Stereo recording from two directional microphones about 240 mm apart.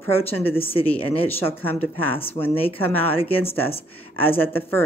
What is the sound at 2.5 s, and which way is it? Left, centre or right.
Speech, left.